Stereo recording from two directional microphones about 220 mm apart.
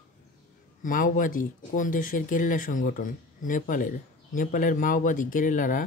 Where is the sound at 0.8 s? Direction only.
35° left (ahead or behind).